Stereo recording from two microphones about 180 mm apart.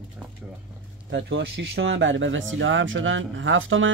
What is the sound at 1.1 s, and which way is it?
Speech, 90° right.